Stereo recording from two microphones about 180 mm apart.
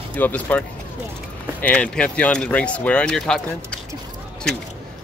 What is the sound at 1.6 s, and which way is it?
Speech, 5° left (ahead or behind).